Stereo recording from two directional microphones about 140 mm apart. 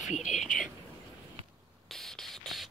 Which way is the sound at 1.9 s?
Centre (ahead or behind).